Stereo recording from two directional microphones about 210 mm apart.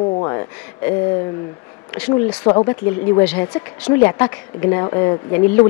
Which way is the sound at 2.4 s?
25° left (ahead or behind).